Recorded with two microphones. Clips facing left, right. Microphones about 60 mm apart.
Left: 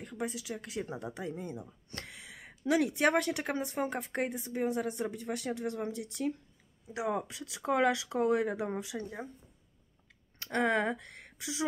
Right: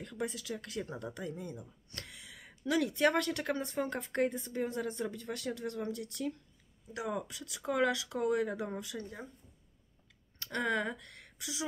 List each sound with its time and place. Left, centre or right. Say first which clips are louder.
0.2 s a woman's voice: left 1 dB; centre; by 9.3 s left
10.4 s speech: left 4 dB; left